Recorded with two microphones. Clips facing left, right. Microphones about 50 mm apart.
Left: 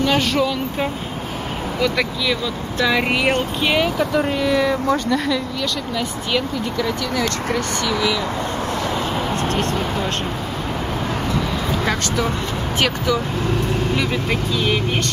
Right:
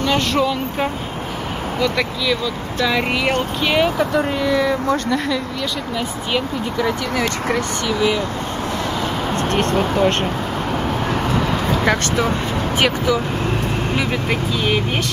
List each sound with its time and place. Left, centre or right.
0.0 s speech: centre
5.9 s speech: centre
9.5 s speech: right
11.8 s speech: right
12.7 s speech: centre
14.3 s speech: centre